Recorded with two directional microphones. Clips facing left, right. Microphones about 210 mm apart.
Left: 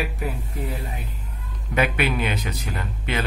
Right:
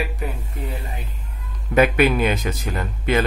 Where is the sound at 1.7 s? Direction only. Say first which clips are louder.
Right 6 dB; 45° right (ahead or behind).